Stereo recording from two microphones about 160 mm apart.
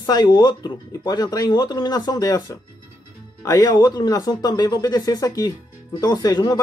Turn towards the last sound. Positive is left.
turn(degrees=25)  # may be behind; listen again after turning